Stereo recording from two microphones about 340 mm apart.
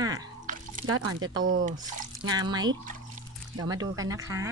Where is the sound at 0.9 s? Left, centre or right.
Right.